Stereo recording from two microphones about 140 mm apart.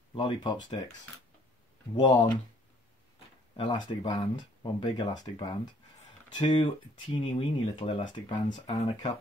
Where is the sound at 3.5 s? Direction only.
35° left (ahead or behind).